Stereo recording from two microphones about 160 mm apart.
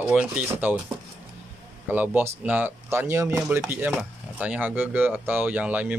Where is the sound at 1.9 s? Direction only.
10° right (ahead or behind).